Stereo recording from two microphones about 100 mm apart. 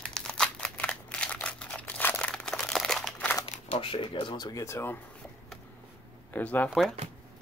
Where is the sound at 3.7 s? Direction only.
60° left (ahead or behind); by 5.0 s 25° left (ahead or behind).